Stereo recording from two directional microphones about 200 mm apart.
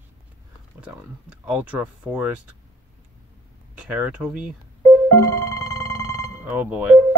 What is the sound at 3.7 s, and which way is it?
Speech, 5° right (ahead or behind).